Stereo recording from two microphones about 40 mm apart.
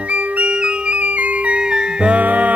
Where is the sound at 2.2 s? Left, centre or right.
Right.